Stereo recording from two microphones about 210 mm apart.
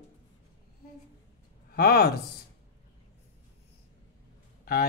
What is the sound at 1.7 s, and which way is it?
Speech, 50° left (ahead or behind).